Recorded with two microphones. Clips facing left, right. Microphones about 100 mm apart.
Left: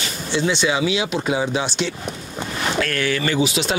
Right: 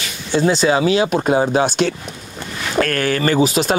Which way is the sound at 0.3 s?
40° right (ahead or behind).